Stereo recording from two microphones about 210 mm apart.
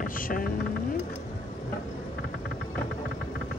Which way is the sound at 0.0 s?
40° left (ahead or behind).